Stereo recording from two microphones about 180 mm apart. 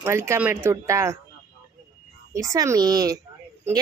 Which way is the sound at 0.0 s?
15° right (ahead or behind).